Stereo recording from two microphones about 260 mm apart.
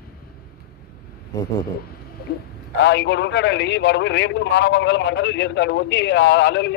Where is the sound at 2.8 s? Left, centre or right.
Left.